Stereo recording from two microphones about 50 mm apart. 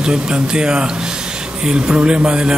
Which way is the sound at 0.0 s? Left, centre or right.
Centre.